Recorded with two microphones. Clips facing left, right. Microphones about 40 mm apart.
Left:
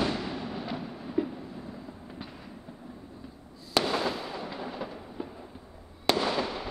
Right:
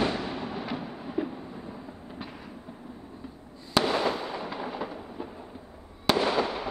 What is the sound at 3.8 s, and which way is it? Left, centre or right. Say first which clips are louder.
Fireworks: right 3 dB; right.